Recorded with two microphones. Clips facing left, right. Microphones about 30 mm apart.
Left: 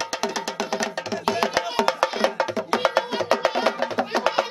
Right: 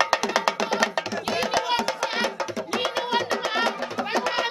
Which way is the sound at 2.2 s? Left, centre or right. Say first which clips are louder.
Left 5 dB; left.